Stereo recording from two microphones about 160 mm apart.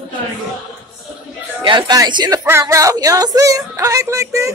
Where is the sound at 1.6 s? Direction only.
30° right (ahead or behind).